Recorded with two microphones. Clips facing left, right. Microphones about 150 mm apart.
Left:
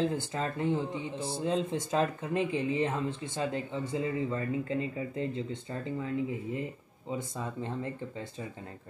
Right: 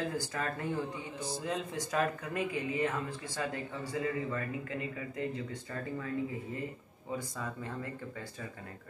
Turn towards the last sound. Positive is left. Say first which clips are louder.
# left 4 dB
turn(degrees=25)  # may be behind; listen again after turning